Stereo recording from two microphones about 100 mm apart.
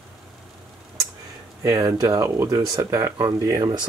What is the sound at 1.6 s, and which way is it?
Speech, 30° right (ahead or behind).